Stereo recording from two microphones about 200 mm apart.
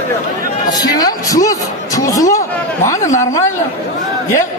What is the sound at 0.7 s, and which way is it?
Music, 20° left (ahead or behind).